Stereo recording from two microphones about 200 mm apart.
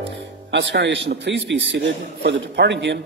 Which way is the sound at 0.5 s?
60° right (ahead or behind).